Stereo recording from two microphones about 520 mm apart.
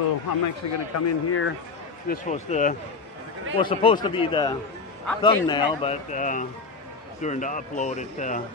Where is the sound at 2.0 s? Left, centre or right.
Centre.